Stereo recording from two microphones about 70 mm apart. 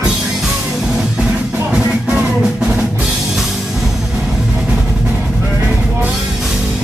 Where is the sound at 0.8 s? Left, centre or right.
Centre.